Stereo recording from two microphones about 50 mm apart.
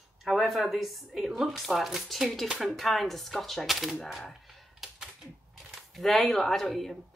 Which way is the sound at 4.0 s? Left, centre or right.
Centre.